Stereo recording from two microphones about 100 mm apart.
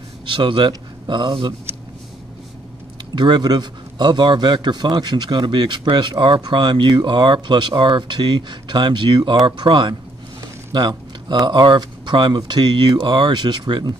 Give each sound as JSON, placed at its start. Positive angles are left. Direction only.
{"t": 0.3, "sound": "speech", "side_deg": -55}
{"t": 3.2, "sound": "a man's voice", "side_deg": -45}